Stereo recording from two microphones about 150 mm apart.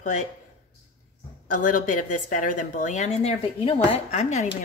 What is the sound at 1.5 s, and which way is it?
A woman's voice, 60° left (ahead or behind).